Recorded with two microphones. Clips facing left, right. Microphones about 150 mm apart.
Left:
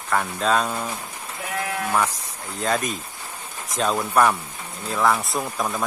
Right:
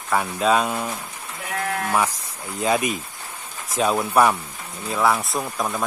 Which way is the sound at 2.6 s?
10° right (ahead or behind).